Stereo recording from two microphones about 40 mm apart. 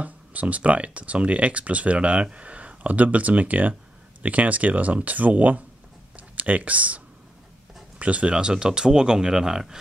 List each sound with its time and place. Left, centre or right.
0.0 s speech: right
6.1 s a sound: right
8.0 s speech: right; by 9.8 s centre